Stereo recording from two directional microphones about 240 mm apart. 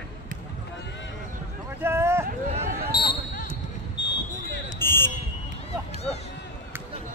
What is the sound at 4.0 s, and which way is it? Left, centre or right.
Basketball bounce, left.